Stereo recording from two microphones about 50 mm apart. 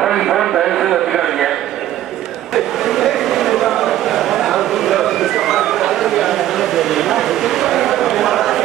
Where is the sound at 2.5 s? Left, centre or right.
Centre.